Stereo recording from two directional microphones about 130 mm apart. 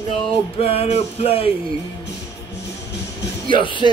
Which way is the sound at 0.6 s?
50° left (ahead or behind).